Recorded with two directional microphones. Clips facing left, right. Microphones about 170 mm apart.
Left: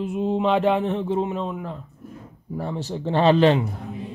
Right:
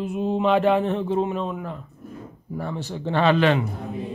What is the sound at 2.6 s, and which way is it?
A man's voice, 35° left (ahead or behind).